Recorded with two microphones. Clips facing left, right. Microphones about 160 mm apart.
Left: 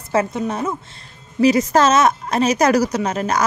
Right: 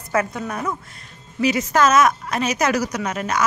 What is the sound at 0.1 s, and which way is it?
Speech, 25° left (ahead or behind).